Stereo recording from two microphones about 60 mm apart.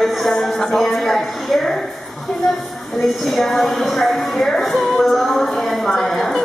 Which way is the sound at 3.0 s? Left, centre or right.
Centre.